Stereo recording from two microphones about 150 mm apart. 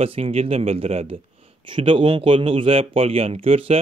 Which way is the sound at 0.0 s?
40° right (ahead or behind).